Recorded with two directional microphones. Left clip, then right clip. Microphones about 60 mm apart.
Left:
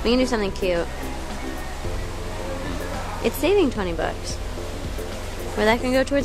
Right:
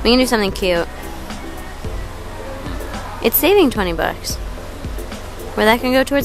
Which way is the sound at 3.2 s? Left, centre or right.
Right.